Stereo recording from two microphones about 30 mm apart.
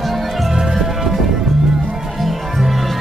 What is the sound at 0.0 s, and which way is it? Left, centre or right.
Music, centre.